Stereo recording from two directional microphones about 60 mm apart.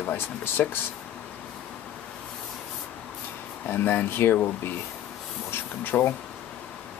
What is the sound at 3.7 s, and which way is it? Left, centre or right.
Speech, left.